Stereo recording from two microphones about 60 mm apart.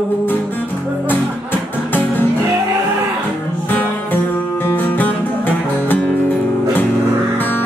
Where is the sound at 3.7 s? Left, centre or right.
Left.